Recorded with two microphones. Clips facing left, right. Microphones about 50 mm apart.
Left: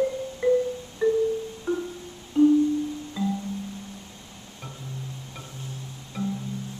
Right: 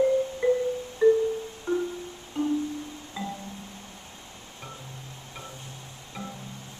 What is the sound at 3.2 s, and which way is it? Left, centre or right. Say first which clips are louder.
Music: left 6 dB; centre.